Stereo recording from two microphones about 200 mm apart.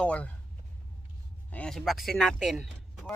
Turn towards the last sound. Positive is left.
turn(degrees=0)  # may be behind; listen again after turning